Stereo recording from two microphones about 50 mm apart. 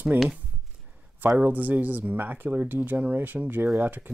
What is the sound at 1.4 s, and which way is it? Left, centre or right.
Speech, right.